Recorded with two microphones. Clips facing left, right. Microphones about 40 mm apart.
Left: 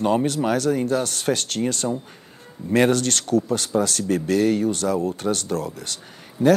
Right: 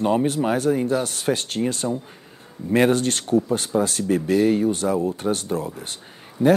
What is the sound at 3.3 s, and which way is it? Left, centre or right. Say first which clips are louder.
Speech: right 1 dB; right.